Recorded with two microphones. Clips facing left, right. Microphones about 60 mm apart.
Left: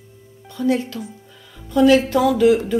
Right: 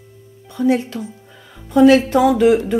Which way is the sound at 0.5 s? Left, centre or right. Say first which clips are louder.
Right 3 dB; right.